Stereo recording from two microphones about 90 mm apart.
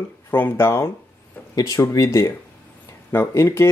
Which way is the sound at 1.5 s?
40° left (ahead or behind).